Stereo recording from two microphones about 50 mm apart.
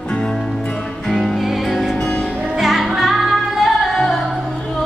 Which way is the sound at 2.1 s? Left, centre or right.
Left.